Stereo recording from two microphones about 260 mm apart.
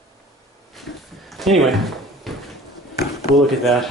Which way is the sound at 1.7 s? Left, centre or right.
Centre.